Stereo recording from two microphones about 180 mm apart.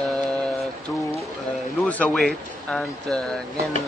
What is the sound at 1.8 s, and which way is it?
A man's voice, 5° left (ahead or behind).